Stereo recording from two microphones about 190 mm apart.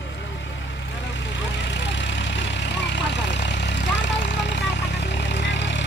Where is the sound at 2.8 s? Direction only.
70° left (ahead or behind).